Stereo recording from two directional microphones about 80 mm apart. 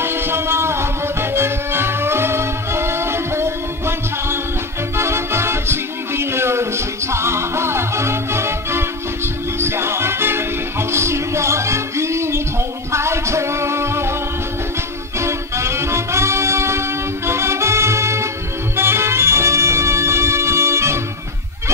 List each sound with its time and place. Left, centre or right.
0.0 s music: right
15.1 s music: right